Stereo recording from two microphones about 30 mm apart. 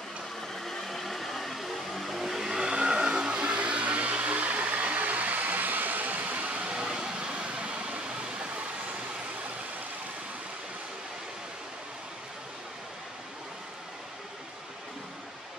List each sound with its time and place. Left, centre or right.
0.4 s vehicle: centre
2.3 s vehicle: centre; by 6.7 s right
6.7 s vehicle: right